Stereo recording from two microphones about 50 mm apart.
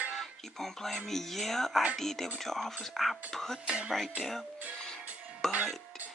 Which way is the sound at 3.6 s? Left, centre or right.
Right.